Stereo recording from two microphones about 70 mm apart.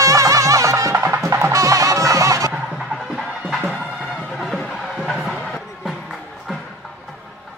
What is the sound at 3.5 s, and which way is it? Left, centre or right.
Music, centre.